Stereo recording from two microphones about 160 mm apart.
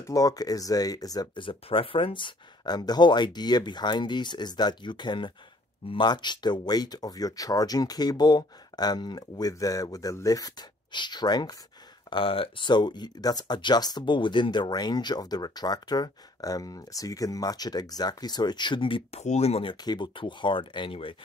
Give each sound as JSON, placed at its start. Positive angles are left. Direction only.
{"t": 0.0, "sound": "speech", "side_deg": 20}
{"t": 19.2, "sound": "speech", "side_deg": 45}